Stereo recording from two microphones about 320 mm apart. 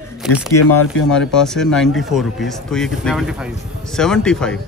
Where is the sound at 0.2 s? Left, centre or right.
Centre.